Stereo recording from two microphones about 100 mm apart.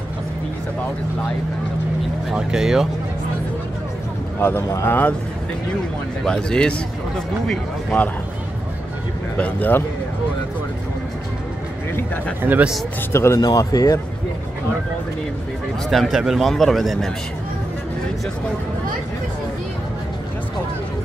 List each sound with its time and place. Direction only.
2.3 s a man's voice: 5° right (ahead or behind)
4.4 s speech: 25° left (ahead or behind)
6.2 s speech: 5° left (ahead or behind)
9.4 s speech: 20° left (ahead or behind)
12.4 s speech: 20° right (ahead or behind)
13.1 s speech: 25° left (ahead or behind)
13.4 s speech: 35° left (ahead or behind)
15.9 s a man's voice: centre (ahead or behind)